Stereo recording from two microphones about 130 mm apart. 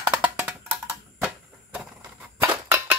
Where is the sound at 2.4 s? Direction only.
20° right (ahead or behind).